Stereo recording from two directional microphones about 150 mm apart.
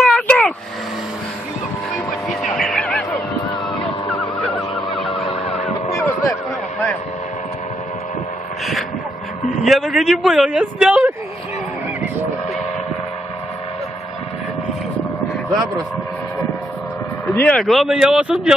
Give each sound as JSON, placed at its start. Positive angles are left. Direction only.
{"t": 0.0, "sound": "vehicle", "side_deg": 5}
{"t": 2.2, "sound": "a sound", "side_deg": 0}
{"t": 5.9, "sound": "a sound", "side_deg": 20}
{"t": 9.6, "sound": "speech", "side_deg": 0}
{"t": 17.3, "sound": "speech", "side_deg": 15}
{"t": 17.6, "sound": "speech", "side_deg": 0}